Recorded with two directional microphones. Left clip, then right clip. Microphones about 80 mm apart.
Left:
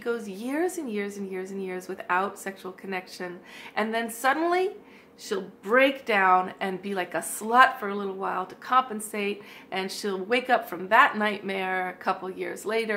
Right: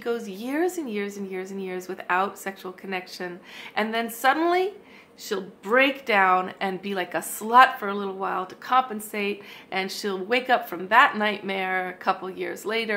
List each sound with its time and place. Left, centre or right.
0.0 s a woman's voice: right